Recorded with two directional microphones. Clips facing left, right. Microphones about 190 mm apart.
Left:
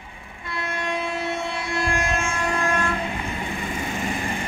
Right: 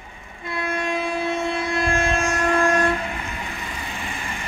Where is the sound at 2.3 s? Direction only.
40° right (ahead or behind).